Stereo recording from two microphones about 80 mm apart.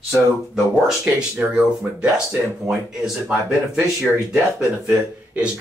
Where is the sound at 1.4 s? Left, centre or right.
Centre.